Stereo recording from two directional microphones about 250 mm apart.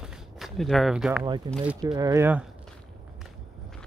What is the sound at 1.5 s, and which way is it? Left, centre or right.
Speech, centre.